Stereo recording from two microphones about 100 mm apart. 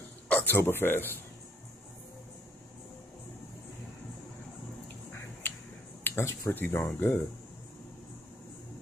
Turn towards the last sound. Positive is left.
turn(degrees=20)  # may be behind; listen again after turning